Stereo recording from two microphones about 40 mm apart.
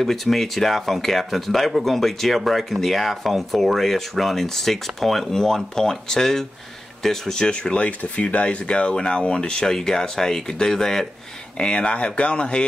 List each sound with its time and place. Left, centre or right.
0.0 s speech: centre
8.0 s speech: left
9.7 s speech: centre
11.5 s speech: left